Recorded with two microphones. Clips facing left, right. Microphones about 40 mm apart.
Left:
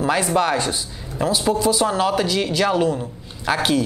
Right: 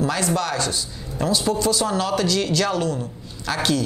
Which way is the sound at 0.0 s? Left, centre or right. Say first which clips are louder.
Left 4 dB; left.